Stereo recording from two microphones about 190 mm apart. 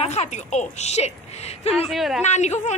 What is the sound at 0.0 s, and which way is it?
A woman's voice, 35° left (ahead or behind).